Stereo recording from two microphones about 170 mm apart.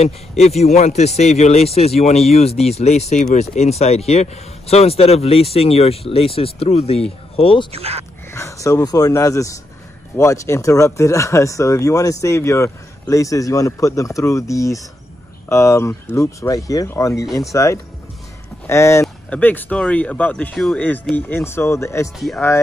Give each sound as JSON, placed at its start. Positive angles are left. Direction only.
{"t": 0.4, "sound": "speech", "side_deg": 40}
{"t": 7.7, "sound": "speech", "side_deg": -35}
{"t": 8.3, "sound": "speech", "side_deg": 15}